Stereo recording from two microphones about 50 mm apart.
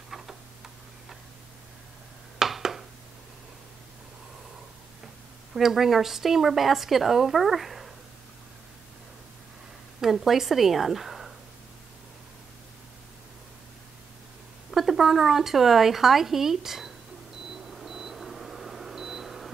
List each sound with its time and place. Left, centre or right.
2.3 s a sound: centre
5.5 s a woman's voice: centre
9.9 s a woman's voice: centre
14.7 s speech: centre
17.6 s beep: centre